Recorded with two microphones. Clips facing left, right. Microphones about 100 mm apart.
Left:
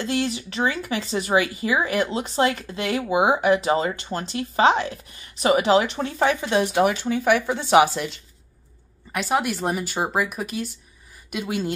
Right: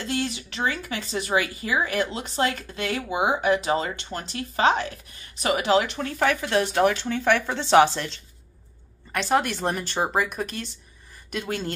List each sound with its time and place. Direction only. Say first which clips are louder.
0.0 s speech: left 4 dB; 30° left (ahead or behind); by 11.7 s 5° left (ahead or behind)